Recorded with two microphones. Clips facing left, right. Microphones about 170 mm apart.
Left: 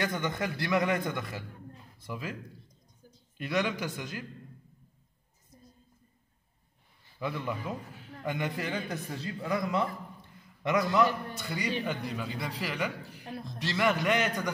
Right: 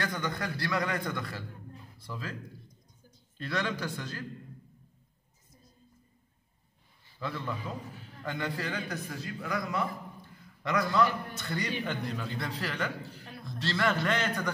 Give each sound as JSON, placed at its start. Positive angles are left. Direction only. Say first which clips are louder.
{"t": 0.0, "sound": "a man's voice", "louder": "left 2 dB", "side_deg": 20}
{"t": 3.3, "sound": "a man's voice", "louder": "left 3 dB", "side_deg": 15}
{"t": 7.2, "sound": "a man's voice", "louder": "left 2 dB", "side_deg": 15}
{"t": 11.3, "sound": "a man's voice", "louder": "left 1 dB", "side_deg": 10}